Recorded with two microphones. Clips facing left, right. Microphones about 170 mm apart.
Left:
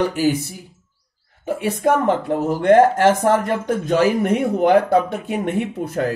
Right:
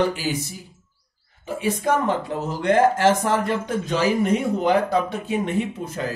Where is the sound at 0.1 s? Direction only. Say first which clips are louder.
Left 7 dB; 50° left (ahead or behind).